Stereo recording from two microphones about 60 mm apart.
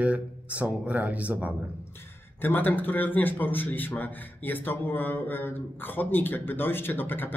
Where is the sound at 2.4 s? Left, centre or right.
Left.